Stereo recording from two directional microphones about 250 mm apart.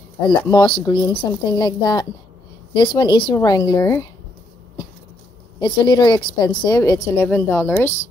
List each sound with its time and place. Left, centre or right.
0.5 s a woman's voice: centre
5.6 s a woman's voice: centre